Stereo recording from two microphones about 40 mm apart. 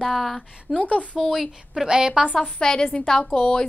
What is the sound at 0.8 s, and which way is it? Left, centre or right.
Speech, left.